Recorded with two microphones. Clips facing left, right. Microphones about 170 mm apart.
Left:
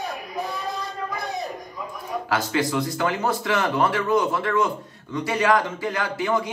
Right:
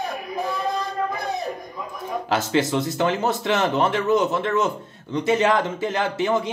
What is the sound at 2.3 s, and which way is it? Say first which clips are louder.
Speech: right 3 dB; 20° right (ahead or behind).